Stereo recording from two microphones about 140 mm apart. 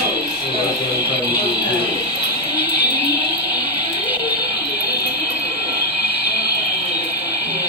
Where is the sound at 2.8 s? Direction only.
10° right (ahead or behind).